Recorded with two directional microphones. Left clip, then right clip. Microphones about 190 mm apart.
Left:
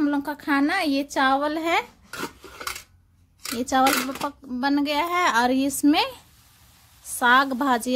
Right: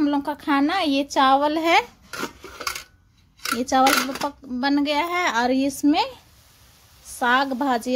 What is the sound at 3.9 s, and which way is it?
Speech, 20° right (ahead or behind).